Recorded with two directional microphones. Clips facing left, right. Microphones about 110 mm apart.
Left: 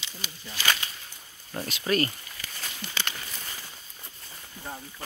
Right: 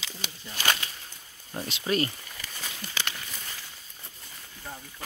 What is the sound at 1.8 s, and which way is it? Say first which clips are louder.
Speech: left 1 dB; 15° right (ahead or behind).